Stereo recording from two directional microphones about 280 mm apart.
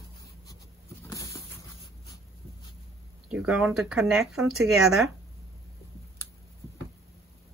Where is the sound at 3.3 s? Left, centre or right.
Centre.